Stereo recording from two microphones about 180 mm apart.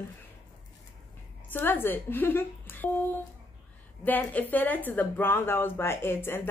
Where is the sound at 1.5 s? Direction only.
10° left (ahead or behind).